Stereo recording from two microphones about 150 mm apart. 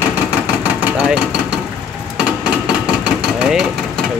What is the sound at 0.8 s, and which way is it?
Engine, 10° right (ahead or behind).